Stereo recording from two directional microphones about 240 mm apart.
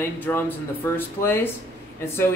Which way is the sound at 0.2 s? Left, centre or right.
Centre.